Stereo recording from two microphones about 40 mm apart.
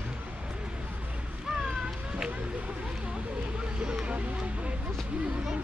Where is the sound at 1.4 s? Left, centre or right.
Centre.